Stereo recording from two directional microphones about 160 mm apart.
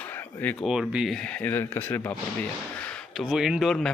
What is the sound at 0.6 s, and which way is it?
Speech, 5° right (ahead or behind).